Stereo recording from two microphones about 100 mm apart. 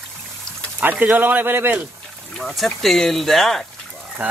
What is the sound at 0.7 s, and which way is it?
Speech, 15° right (ahead or behind).